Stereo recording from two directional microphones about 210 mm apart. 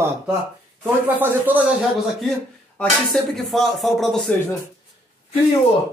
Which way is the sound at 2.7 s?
Centre (ahead or behind).